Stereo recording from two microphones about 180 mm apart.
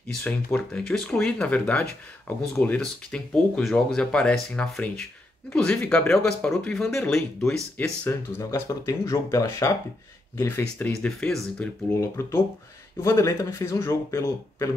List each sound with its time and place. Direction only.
0.1 s speech: 5° left (ahead or behind)
10.6 s speech: 5° left (ahead or behind)